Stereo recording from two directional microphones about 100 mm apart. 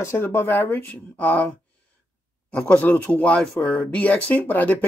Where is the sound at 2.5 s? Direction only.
15° left (ahead or behind).